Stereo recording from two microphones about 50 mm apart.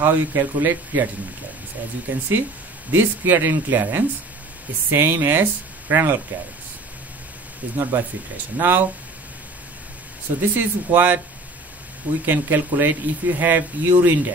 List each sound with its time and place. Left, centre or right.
0.0 s speech: right
7.7 s speech: right
10.5 s speech: right
12.3 s speech: right